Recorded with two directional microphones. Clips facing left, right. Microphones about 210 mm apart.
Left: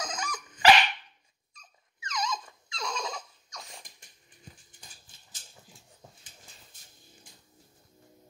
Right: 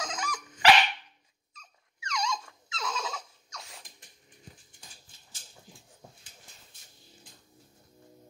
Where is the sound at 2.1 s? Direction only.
Centre (ahead or behind).